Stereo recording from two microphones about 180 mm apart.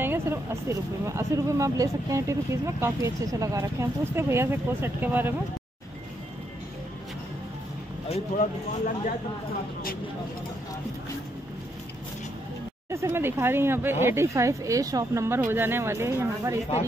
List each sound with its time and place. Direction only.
0.0 s a sound: 15° right (ahead or behind)
1.0 s speech: 15° right (ahead or behind)
8.1 s speech: 40° left (ahead or behind)
12.9 s speech: 15° right (ahead or behind)